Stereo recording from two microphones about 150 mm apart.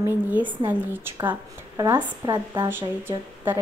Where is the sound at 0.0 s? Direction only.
10° right (ahead or behind).